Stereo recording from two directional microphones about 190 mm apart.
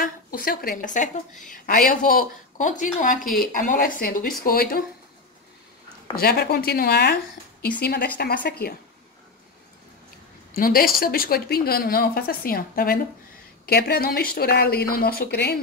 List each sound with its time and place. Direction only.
0.0 s speech: 50° left (ahead or behind)
6.1 s speech: 55° left (ahead or behind)
10.5 s speech: 50° left (ahead or behind)